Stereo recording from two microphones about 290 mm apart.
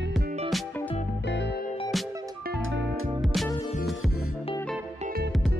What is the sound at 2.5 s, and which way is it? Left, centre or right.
Music, right.